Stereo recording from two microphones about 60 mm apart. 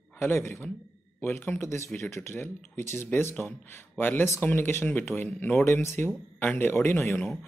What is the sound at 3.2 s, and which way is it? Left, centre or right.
Speech, left.